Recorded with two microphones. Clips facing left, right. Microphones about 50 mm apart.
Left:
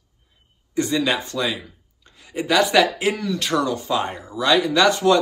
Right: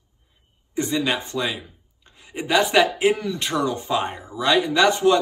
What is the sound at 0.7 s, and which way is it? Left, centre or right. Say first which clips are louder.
Speech: left 2 dB; right.